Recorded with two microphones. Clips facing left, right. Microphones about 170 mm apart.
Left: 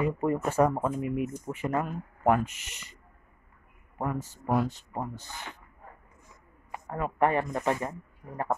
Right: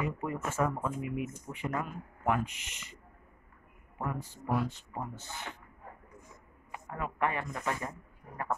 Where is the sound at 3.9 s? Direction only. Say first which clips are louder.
Left 5 dB; 40° left (ahead or behind).